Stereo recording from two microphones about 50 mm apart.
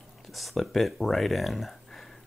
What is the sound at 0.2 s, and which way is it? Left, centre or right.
Speech, centre.